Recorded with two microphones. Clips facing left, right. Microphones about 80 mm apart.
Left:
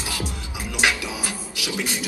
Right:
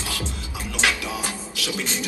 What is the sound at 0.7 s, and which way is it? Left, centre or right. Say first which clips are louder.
Music: left 1 dB; centre.